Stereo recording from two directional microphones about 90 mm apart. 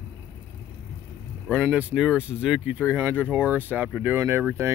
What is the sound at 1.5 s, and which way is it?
Speech, 15° right (ahead or behind).